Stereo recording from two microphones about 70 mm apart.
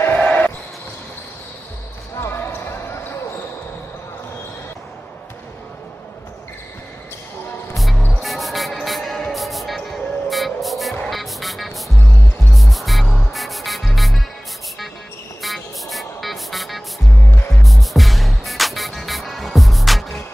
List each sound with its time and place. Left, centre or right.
0.1 s basketball bounce: left
2.1 s basketball bounce: left
7.7 s music: centre
15.4 s music: centre